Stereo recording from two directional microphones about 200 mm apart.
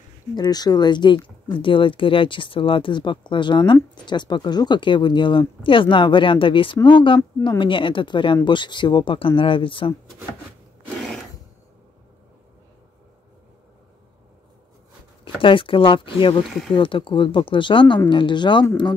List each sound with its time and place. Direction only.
0.4 s speech: 20° left (ahead or behind)
11.0 s a sound: centre (ahead or behind)
15.4 s speech: 25° left (ahead or behind)